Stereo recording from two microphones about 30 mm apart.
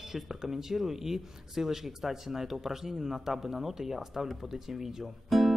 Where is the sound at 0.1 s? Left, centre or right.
Centre.